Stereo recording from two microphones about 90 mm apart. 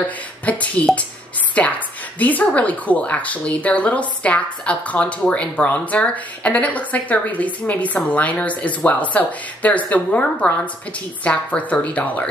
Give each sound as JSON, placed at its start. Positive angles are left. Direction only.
{"t": 0.5, "sound": "speech", "side_deg": 15}